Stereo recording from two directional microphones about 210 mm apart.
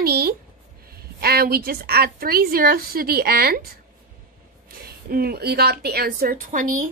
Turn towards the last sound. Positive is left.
turn(degrees=-40)  # may be behind; listen again after turning